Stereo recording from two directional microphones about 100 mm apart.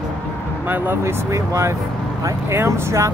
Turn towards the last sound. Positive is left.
turn(degrees=-30)  # may be behind; listen again after turning